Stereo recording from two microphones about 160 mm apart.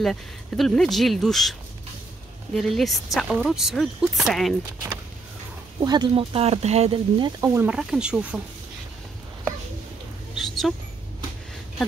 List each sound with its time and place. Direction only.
0.0 s speech: centre (ahead or behind)
5.9 s speech: 30° right (ahead or behind)
7.2 s speech: 30° right (ahead or behind)
7.4 s speech: 15° right (ahead or behind)
7.7 s speech: 5° right (ahead or behind)
10.3 s a sound: centre (ahead or behind)